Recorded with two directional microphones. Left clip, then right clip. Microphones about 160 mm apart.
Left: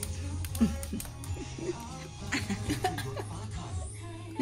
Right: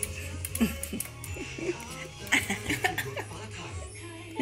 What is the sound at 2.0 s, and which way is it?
Music, 15° right (ahead or behind).